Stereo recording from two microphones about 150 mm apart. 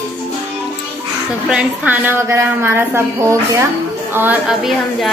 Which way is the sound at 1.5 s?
10° right (ahead or behind).